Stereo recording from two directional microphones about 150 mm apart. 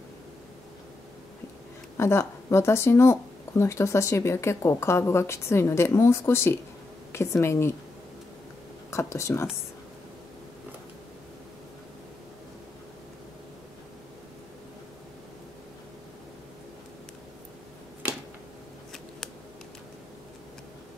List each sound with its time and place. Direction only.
2.0 s speech: 15° left (ahead or behind)
8.9 s speech: 20° left (ahead or behind)